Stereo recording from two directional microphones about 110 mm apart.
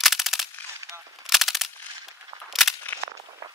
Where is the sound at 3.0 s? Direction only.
65° right (ahead or behind).